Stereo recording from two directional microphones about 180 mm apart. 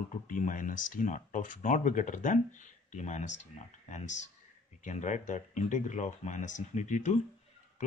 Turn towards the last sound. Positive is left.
turn(degrees=45)  # may be behind; listen again after turning